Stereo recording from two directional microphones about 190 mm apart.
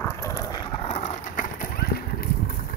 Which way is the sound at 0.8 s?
35° left (ahead or behind).